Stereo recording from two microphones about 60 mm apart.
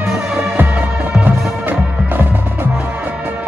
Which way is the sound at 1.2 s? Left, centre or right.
Right.